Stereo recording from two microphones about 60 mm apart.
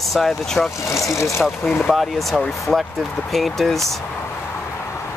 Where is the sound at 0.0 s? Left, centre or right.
Centre.